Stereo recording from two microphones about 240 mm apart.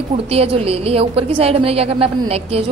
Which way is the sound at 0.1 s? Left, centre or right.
Right.